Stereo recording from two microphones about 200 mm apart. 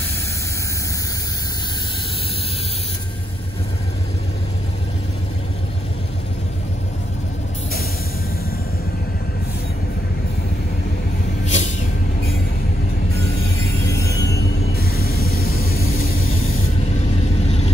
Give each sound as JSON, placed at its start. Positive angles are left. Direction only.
{"t": 11.4, "sound": "vehicle", "side_deg": 35}
{"t": 13.8, "sound": "music", "side_deg": 55}
{"t": 14.3, "sound": "vehicle", "side_deg": 50}